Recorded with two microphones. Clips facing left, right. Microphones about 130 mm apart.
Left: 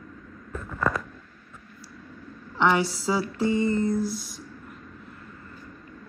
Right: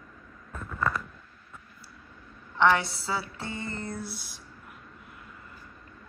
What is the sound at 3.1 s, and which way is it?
Mantra, 15° left (ahead or behind).